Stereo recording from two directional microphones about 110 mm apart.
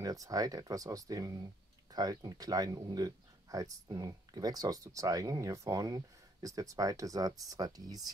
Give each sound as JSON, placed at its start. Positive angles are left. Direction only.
{"t": 0.0, "sound": "speech", "side_deg": -30}